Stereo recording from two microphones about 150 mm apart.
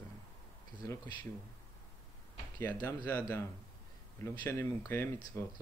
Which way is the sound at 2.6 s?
20° left (ahead or behind).